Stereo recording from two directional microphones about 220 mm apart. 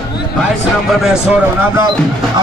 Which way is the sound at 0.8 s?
5° right (ahead or behind).